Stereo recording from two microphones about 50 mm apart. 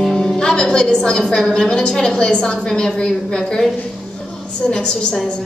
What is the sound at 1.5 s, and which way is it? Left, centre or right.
A woman's voice, centre.